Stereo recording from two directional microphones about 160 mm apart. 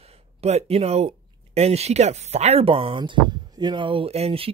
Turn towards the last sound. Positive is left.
turn(degrees=-40)  # may be behind; listen again after turning